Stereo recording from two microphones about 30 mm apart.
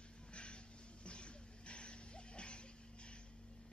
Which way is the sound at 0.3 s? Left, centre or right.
Left.